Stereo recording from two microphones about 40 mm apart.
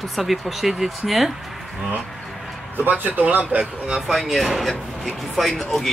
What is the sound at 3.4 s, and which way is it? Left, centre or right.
Speech, right.